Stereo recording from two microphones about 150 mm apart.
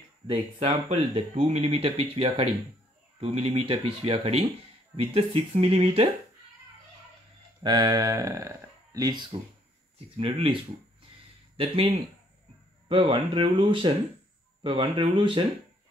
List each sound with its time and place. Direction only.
0.3 s speech: 40° right (ahead or behind)
7.6 s speech: 30° right (ahead or behind)
9.9 s speech: 40° right (ahead or behind)